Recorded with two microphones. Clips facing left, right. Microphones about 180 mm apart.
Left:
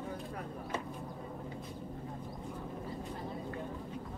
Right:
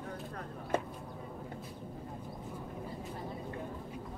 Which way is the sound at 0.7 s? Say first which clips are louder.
Right 7 dB; 50° right (ahead or behind).